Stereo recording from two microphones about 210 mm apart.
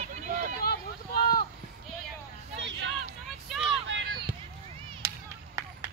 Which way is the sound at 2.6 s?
55° right (ahead or behind).